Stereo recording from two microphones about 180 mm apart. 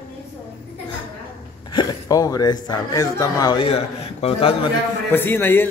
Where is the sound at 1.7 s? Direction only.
25° left (ahead or behind).